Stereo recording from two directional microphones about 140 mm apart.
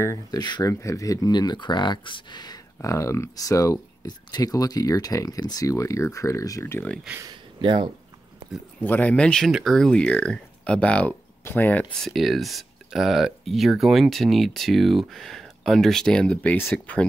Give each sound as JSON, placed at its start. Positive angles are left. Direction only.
{"t": 0.0, "sound": "speech", "side_deg": 25}
{"t": 7.2, "sound": "speech", "side_deg": -30}
{"t": 8.8, "sound": "speech", "side_deg": 10}
{"t": 11.9, "sound": "speech", "side_deg": 0}